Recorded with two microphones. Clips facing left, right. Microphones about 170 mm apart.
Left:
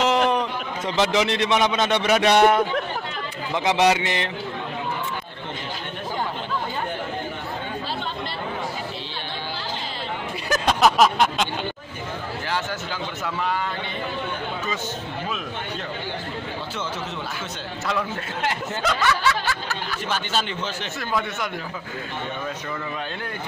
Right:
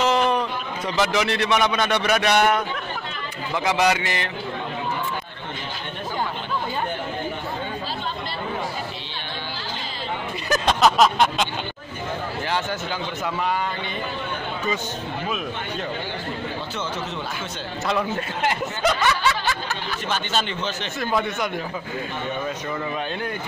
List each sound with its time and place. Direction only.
0.0 s a man's voice: 15° left (ahead or behind)
10.5 s a sound: 5° left (ahead or behind)
13.2 s a man's voice: 15° right (ahead or behind)
17.8 s speech: 20° right (ahead or behind)
20.1 s a man's voice: 5° left (ahead or behind)
21.1 s speech: 20° right (ahead or behind)